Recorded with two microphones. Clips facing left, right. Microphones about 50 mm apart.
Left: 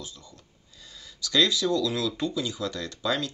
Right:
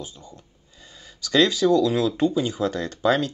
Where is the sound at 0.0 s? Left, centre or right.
Right.